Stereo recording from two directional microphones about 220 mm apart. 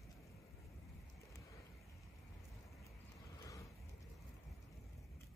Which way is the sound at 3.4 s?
15° left (ahead or behind).